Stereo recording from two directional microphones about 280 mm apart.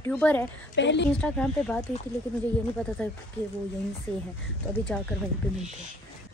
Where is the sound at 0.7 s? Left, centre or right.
Left.